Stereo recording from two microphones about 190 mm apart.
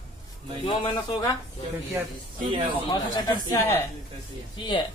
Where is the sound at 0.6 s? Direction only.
25° left (ahead or behind).